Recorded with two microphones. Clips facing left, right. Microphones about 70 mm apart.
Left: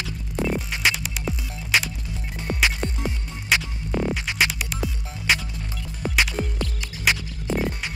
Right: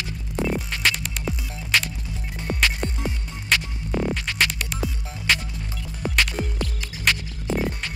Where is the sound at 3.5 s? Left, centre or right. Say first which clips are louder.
Even; centre.